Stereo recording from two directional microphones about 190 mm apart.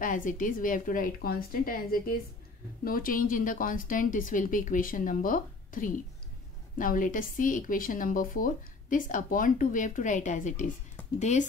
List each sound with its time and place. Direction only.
0.0 s a woman's voice: 45° left (ahead or behind)